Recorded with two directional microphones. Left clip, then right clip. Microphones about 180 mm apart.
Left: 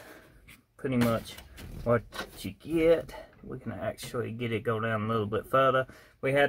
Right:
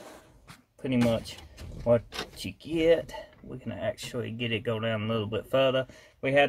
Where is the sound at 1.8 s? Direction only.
5° left (ahead or behind).